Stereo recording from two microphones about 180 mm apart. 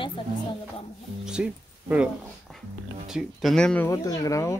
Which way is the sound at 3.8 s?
20° left (ahead or behind).